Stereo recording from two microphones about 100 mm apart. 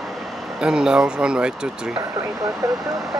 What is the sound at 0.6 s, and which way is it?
Speech, 10° right (ahead or behind).